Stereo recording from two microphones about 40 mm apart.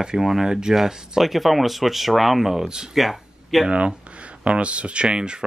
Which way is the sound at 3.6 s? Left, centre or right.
Right.